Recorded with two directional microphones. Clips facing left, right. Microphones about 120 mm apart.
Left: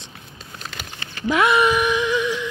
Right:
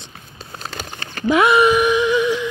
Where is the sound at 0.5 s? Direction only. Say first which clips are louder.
Right 5 dB; 40° right (ahead or behind).